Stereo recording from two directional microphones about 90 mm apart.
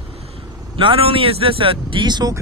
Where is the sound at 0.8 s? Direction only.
80° right; by 2.3 s 55° right (ahead or behind).